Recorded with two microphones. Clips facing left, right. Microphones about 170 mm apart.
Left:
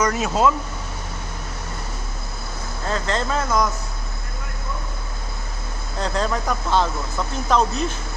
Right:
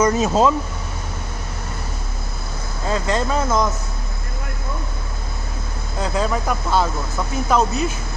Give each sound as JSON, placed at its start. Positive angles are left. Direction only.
{"t": 0.0, "sound": "speech", "side_deg": -30}
{"t": 2.9, "sound": "speech", "side_deg": -10}
{"t": 5.9, "sound": "speech", "side_deg": -5}